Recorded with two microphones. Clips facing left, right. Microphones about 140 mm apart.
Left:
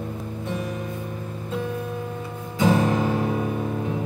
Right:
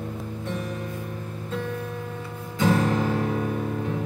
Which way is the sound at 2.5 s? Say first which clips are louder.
Left 2 dB; 15° left (ahead or behind).